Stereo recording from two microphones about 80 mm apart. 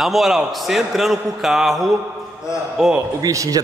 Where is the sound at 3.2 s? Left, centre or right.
Right.